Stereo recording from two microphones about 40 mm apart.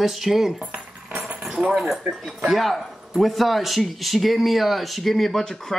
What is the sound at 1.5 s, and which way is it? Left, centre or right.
Speech, right.